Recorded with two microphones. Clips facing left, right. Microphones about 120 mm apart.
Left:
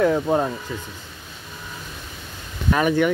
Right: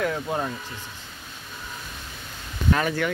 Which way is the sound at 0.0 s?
25° left (ahead or behind).